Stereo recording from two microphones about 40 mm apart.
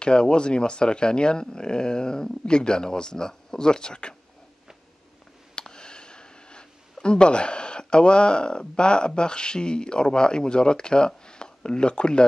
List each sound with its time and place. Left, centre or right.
0.0 s speech: left
5.6 s speech: left